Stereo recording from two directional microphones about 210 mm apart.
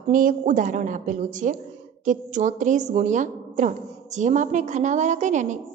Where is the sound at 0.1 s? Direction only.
40° right (ahead or behind).